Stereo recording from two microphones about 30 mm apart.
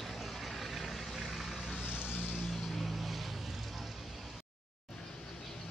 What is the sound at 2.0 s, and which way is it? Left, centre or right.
Vehicle, left.